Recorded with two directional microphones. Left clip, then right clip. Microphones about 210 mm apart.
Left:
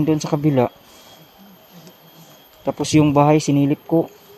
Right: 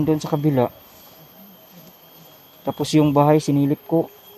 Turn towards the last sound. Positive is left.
turn(degrees=-5)  # may be behind; listen again after turning